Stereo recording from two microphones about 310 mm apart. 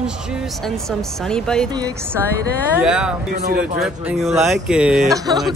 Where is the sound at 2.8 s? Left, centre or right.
Centre.